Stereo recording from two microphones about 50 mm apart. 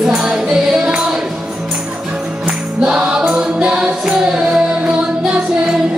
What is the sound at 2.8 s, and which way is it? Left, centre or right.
Music, centre.